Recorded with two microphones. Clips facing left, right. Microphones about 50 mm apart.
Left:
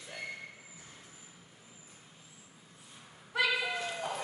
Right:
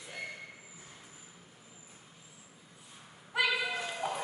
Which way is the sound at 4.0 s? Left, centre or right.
Centre.